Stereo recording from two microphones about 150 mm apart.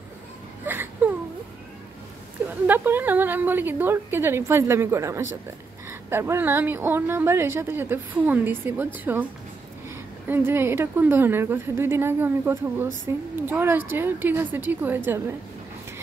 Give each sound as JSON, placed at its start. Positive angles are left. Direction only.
{"t": 0.7, "sound": "whimper", "side_deg": -10}
{"t": 2.6, "sound": "a woman's voice", "side_deg": -15}